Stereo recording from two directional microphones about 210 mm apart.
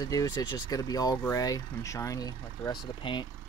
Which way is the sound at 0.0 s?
15° left (ahead or behind).